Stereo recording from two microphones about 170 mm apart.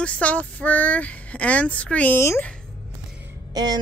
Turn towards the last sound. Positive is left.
turn(degrees=-25)  # may be behind; listen again after turning